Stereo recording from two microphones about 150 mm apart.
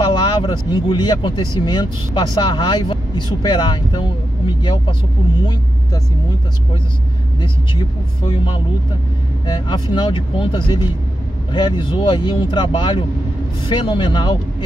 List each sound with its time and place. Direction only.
0.0 s speech: 30° left (ahead or behind)
7.3 s speech: 30° left (ahead or behind)
9.5 s speech: 30° left (ahead or behind)